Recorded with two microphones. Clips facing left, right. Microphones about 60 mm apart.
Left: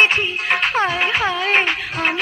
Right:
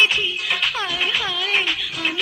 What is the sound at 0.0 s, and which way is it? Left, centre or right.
Music, left.